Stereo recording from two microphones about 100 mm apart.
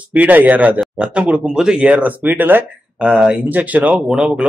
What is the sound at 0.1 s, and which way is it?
Speech, 15° right (ahead or behind).